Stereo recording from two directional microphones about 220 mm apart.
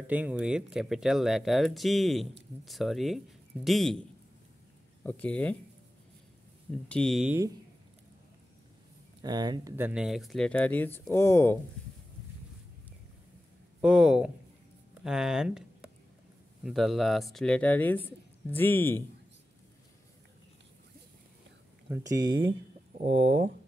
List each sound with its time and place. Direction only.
0.0 s speech: 5° right (ahead or behind)
5.0 s speech: 5° left (ahead or behind)
6.9 s speech: centre (ahead or behind)
9.2 s speech: 20° right (ahead or behind); by 11.5 s 10° left (ahead or behind)
13.7 s speech: 5° right (ahead or behind)
22.9 s speech: 30° right (ahead or behind)